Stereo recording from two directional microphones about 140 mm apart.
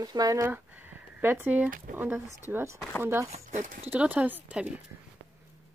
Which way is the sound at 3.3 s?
65° right (ahead or behind).